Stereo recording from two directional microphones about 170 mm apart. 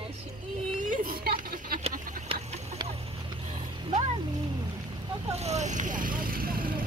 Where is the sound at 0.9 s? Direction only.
55° right (ahead or behind).